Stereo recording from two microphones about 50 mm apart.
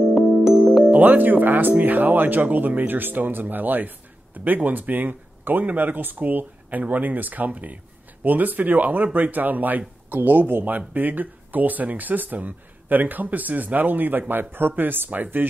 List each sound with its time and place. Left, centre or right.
0.1 s music: centre
0.9 s speech: right